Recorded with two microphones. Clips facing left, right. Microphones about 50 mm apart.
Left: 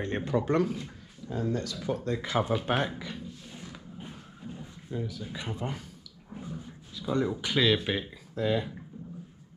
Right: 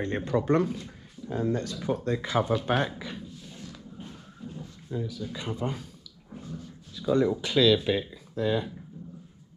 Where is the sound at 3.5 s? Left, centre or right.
Centre.